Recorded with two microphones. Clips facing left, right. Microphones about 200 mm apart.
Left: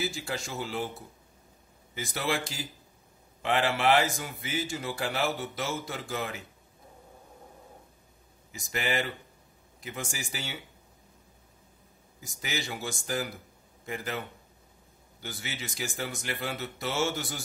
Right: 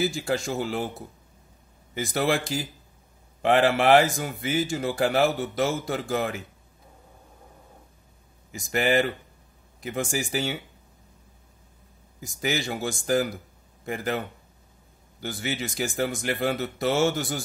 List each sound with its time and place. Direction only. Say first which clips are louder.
0.0 s speech: right 8 dB; 50° right (ahead or behind)
2.0 s speech: right 7 dB; 50° right (ahead or behind)
8.5 s speech: right 8 dB; 50° right (ahead or behind)
12.2 s speech: right 8 dB; 50° right (ahead or behind)
15.2 s speech: right 9 dB; 50° right (ahead or behind)